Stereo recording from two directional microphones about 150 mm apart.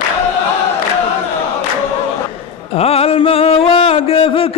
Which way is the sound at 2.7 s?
40° left (ahead or behind).